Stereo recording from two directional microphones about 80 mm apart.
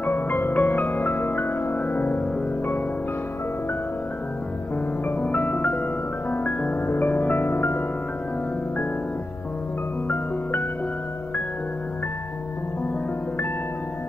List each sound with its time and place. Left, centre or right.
0.0 s music: left
5.0 s music: left